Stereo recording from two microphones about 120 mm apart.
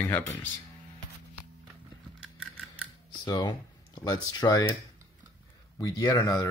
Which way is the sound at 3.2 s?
35° left (ahead or behind).